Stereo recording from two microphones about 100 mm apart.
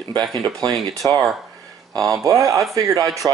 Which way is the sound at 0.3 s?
40° right (ahead or behind).